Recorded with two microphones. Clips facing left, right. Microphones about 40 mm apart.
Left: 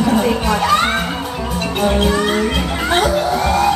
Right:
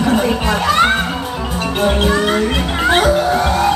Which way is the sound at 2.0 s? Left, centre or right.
Right.